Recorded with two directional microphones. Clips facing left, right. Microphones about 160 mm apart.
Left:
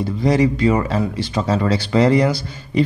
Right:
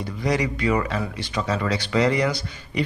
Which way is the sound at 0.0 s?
30° left (ahead or behind).